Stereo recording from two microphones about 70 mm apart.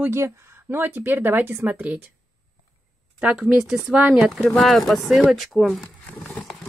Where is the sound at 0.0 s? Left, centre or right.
Right.